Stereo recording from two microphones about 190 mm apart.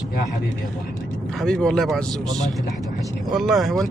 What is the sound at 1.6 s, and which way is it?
Speech, centre (ahead or behind).